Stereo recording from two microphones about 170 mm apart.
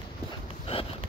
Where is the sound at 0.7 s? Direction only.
35° left (ahead or behind).